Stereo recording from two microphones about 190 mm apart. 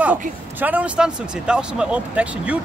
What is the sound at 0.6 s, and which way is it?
A man's voice, 5° right (ahead or behind).